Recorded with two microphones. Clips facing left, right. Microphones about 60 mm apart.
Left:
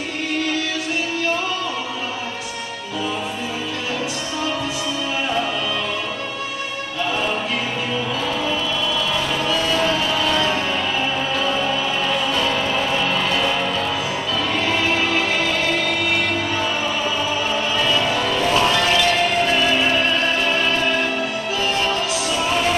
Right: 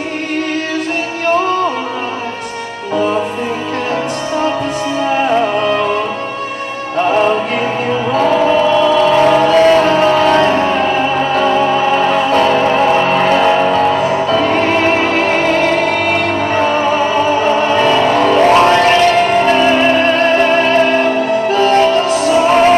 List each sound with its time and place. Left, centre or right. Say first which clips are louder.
1.2 s music: right 14 dB; right
5.1 s music: right 10 dB; right
7.0 s music: right 11 dB; right
8.1 s choir: right 11 dB; right